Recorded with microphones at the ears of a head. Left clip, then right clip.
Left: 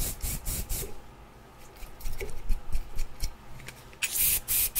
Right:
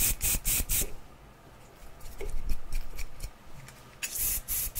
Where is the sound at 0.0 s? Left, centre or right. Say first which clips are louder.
Right 6 dB; right.